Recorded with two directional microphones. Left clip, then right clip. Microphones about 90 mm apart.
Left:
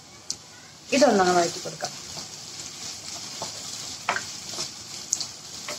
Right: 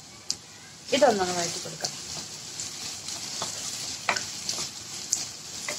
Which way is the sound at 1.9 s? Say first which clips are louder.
Even; 30° left (ahead or behind).